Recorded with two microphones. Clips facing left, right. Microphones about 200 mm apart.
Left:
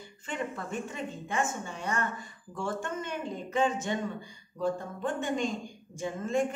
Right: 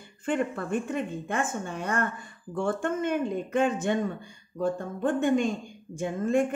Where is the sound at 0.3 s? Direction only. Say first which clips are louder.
Right 8 dB; 55° right (ahead or behind).